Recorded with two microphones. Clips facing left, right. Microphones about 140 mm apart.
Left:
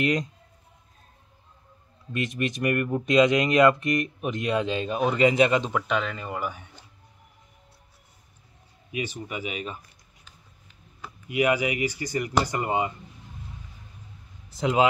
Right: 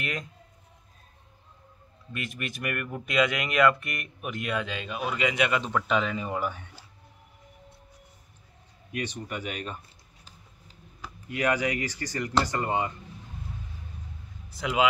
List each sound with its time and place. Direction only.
0.0 s speech: 20° left (ahead or behind)
2.1 s speech: 25° left (ahead or behind)
5.9 s speech: 5° right (ahead or behind)
8.9 s speech: 5° left (ahead or behind)
11.2 s speech: 10° left (ahead or behind)
14.6 s speech: 35° left (ahead or behind)